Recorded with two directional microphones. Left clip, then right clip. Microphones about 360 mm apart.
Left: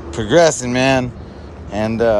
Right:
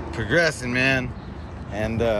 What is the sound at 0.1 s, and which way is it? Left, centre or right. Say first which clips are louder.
Speech: left 9 dB; left.